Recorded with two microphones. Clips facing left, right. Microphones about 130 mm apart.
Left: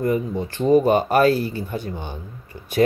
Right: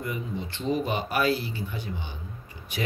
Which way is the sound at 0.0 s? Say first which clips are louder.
Left 11 dB; 45° left (ahead or behind).